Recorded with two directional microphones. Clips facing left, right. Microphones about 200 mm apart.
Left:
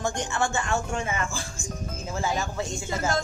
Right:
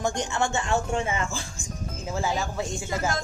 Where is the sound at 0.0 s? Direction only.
20° right (ahead or behind).